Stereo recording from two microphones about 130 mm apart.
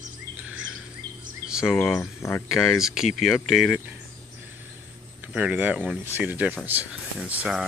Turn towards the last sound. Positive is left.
turn(degrees=-10)  # may be behind; listen again after turning